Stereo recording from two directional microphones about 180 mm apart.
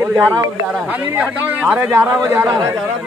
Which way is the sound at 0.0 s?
15° right (ahead or behind).